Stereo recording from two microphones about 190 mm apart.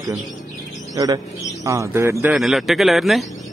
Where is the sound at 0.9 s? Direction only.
20° right (ahead or behind).